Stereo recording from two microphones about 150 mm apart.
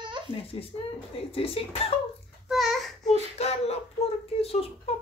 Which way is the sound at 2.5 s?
Centre (ahead or behind).